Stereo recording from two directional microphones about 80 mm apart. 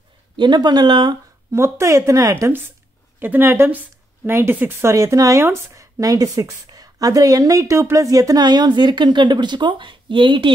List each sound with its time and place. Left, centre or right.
0.4 s speech: right
1.5 s speech: right
3.2 s a woman's voice: right